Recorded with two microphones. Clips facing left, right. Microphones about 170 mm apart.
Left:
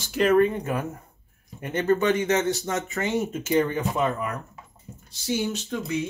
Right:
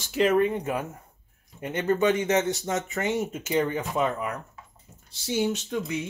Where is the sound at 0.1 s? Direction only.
20° right (ahead or behind).